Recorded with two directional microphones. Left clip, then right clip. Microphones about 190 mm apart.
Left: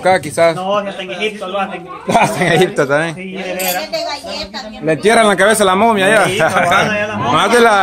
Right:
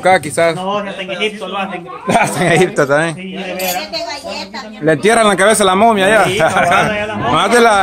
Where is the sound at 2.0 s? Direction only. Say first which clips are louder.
Even; 10° right (ahead or behind).